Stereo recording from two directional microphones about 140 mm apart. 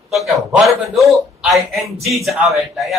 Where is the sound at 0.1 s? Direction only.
Centre (ahead or behind).